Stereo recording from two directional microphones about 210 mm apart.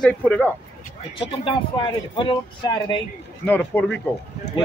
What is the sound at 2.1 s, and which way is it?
Speech, 25° left (ahead or behind).